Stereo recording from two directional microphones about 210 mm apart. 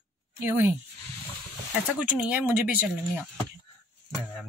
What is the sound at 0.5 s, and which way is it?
Speech, 10° right (ahead or behind).